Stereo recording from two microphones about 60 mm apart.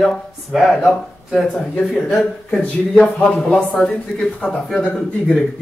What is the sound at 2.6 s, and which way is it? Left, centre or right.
Speech, left.